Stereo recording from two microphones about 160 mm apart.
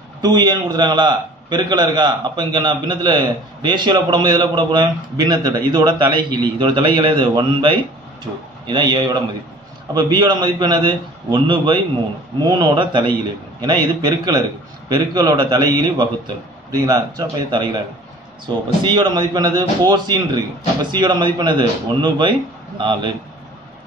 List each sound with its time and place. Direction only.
0.2 s a man's voice: 25° right (ahead or behind)